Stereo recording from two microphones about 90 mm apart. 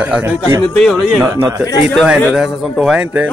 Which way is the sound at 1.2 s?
30° right (ahead or behind).